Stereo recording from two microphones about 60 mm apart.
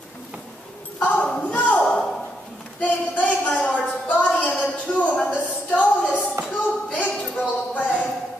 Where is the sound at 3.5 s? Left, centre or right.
Centre.